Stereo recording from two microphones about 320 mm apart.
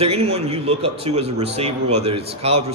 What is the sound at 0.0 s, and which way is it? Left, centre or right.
A man's voice, centre.